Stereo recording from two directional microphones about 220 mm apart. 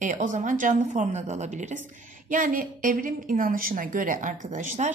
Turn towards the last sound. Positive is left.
turn(degrees=-35)  # may be behind; listen again after turning